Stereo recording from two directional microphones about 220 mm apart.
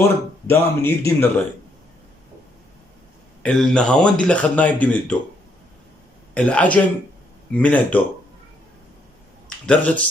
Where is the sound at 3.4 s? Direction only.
5° left (ahead or behind).